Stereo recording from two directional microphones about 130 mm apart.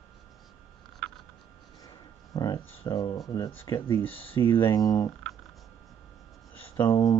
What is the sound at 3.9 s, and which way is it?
Speech, 45° left (ahead or behind).